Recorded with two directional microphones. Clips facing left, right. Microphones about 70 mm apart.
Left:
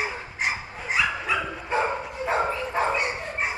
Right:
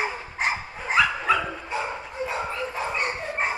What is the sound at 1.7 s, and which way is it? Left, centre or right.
Dog, left.